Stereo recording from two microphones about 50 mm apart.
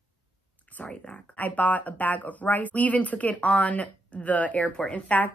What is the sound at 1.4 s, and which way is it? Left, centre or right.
Speech, left.